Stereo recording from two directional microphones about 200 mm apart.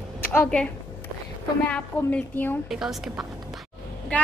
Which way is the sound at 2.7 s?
Centre (ahead or behind).